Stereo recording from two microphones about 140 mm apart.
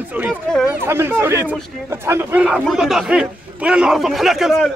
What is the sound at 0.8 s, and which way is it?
A man's voice, 15° right (ahead or behind).